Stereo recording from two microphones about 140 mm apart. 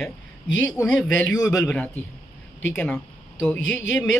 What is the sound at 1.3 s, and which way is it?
Speech, 25° left (ahead or behind).